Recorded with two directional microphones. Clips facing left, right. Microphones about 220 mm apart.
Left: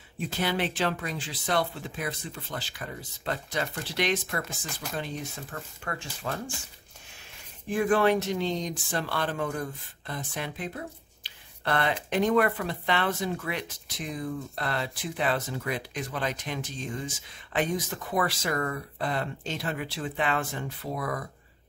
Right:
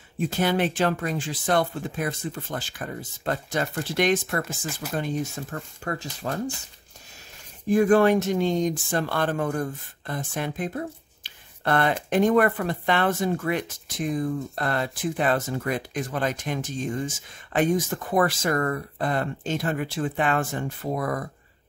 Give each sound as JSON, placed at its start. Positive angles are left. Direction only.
{"t": 0.2, "sound": "speech", "side_deg": -45}
{"t": 7.6, "sound": "speech", "side_deg": -40}